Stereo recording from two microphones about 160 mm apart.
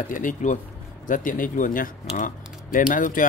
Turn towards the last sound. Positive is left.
turn(degrees=55)  # may be behind; listen again after turning